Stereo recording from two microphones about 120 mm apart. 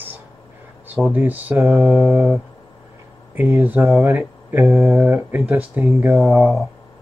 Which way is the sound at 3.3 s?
15° right (ahead or behind).